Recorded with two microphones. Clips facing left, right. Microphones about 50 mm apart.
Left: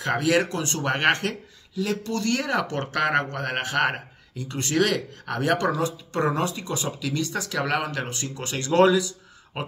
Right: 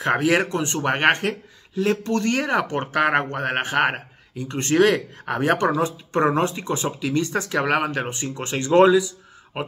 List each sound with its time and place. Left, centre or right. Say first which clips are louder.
0.0 s speech: right 3 dB; right
1.8 s speech: right 5 dB; right
4.6 s speech: right 5 dB; right; by 9.7 s centre